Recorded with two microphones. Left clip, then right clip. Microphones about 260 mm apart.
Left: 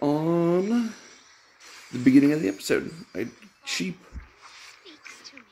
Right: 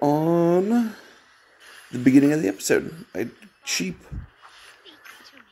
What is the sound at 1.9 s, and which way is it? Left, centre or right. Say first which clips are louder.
Speech: right 2 dB; centre.